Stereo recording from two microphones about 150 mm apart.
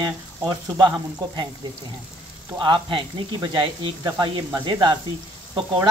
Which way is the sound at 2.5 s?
30° right (ahead or behind).